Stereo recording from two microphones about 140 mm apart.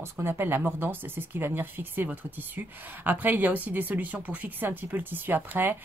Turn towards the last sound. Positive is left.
turn(degrees=-15)  # may be behind; listen again after turning